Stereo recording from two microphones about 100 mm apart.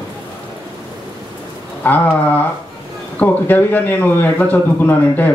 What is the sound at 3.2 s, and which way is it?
Speech, 15° left (ahead or behind).